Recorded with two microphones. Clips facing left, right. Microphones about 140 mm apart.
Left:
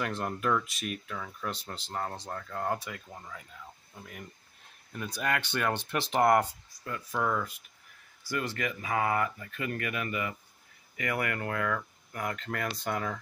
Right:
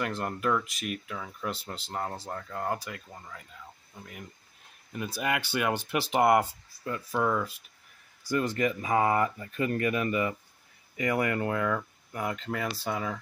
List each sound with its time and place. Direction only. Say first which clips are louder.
0.0 s speech: right 1 dB; centre (ahead or behind)
6.7 s a sound: right 4 dB; 25° right (ahead or behind)
7.1 s speech: right 3 dB; 10° right (ahead or behind)
8.5 s speech: right 5 dB; 30° right (ahead or behind)
12.4 s speech: right 2 dB; 5° right (ahead or behind)